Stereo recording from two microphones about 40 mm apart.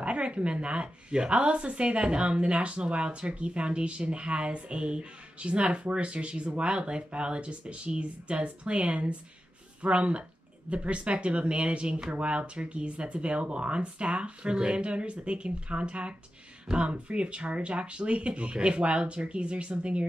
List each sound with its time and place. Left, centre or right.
0.0 s speech: right